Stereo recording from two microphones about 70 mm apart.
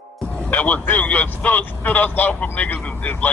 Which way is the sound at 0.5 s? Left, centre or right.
Left.